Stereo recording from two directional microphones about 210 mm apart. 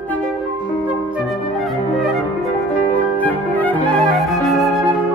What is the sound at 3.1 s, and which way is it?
Flute, 10° left (ahead or behind).